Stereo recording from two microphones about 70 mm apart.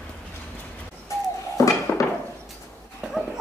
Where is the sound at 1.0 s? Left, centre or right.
Left.